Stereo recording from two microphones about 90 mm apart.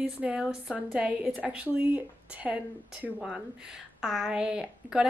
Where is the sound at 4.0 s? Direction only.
5° right (ahead or behind).